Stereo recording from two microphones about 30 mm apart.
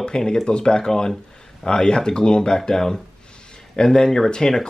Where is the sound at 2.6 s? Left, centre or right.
Centre.